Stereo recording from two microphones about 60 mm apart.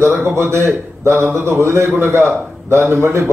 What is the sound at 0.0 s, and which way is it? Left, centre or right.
A man's voice, right.